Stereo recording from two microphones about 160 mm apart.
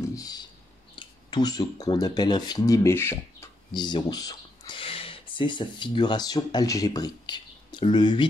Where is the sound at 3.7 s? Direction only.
25° left (ahead or behind).